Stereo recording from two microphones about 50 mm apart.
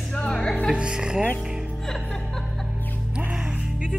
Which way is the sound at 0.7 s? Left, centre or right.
Centre.